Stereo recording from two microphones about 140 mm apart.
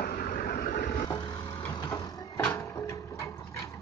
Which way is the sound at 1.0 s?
30° left (ahead or behind).